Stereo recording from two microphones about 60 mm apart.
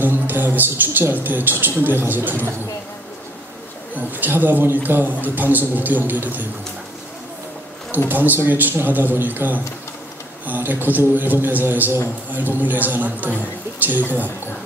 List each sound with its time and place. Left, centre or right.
0.0 s a man's voice: right
3.9 s a man's voice: right
8.1 s a man's voice: right